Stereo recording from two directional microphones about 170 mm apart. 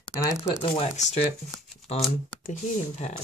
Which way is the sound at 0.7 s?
40° left (ahead or behind).